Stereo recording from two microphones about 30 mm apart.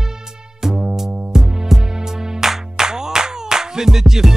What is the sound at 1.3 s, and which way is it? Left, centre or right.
Music, centre.